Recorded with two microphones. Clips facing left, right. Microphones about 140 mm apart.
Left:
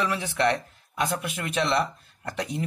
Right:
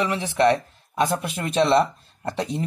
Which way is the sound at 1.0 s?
35° right (ahead or behind).